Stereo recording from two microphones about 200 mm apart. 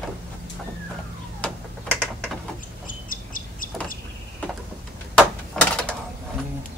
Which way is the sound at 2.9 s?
40° left (ahead or behind).